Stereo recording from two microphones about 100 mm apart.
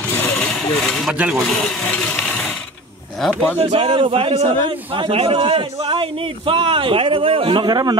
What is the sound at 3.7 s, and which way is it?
A man's voice, 70° right (ahead or behind).